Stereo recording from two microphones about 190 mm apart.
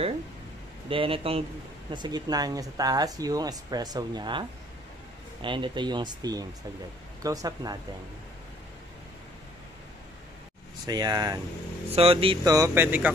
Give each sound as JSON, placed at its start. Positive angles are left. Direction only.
{"t": 0.8, "sound": "speech", "side_deg": -30}
{"t": 10.9, "sound": "speech", "side_deg": -20}
{"t": 11.9, "sound": "speech", "side_deg": -30}
{"t": 12.5, "sound": "speech", "side_deg": -15}